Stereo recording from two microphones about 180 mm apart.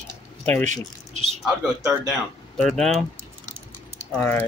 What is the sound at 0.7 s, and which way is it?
Speech, 40° right (ahead or behind).